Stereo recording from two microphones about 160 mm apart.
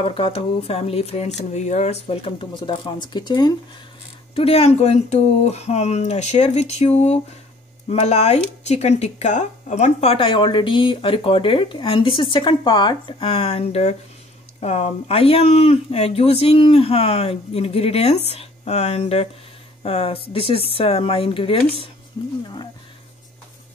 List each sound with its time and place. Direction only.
0.0 s speech: 35° left (ahead or behind)
4.4 s speech: 40° left (ahead or behind)